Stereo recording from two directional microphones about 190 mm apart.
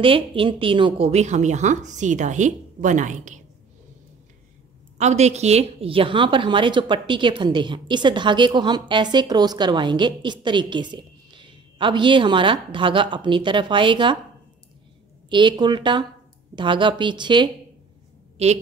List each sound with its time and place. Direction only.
0.0 s a woman's voice: 30° right (ahead or behind)
4.9 s a woman's voice: 35° right (ahead or behind)
15.2 s a woman's voice: 25° right (ahead or behind)